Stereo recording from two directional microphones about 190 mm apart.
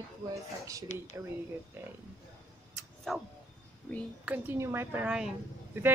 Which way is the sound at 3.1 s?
Centre (ahead or behind).